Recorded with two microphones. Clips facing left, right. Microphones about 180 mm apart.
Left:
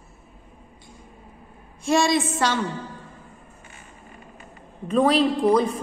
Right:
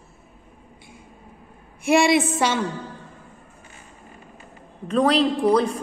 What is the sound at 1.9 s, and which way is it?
Speech, 10° right (ahead or behind).